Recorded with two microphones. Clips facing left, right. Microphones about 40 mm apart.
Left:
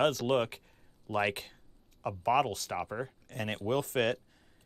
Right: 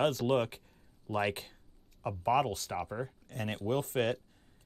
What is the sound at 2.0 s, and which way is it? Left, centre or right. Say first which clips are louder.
Speech: left 1 dB; left.